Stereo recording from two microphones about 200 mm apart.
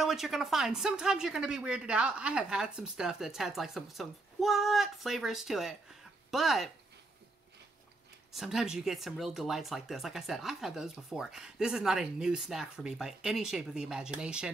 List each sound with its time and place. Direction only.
0.0 s speech: centre (ahead or behind)
8.3 s speech: centre (ahead or behind)